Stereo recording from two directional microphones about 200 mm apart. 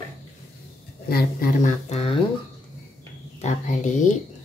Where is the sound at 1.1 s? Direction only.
45° left (ahead or behind).